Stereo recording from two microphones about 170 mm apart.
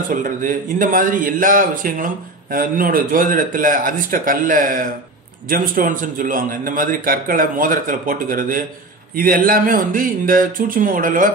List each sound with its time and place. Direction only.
0.1 s a man's voice: 50° right (ahead or behind)